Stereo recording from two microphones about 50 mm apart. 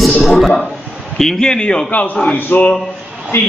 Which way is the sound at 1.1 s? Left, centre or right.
Centre.